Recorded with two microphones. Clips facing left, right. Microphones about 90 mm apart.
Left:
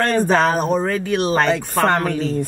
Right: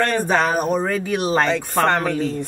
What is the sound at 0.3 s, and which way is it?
Speech, 5° right (ahead or behind).